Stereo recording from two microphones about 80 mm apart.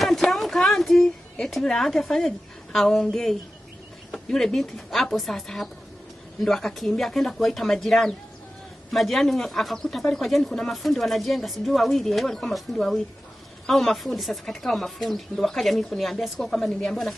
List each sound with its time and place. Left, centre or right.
0.0 s a woman's voice: centre